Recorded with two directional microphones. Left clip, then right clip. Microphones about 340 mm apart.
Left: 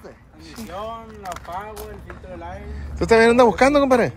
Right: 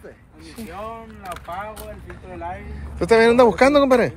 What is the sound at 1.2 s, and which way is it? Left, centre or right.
Speech, centre.